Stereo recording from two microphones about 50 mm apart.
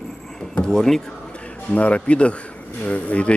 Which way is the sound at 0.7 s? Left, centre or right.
Centre.